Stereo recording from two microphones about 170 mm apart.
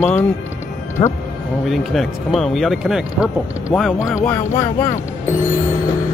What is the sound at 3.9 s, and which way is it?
Speech, 15° left (ahead or behind).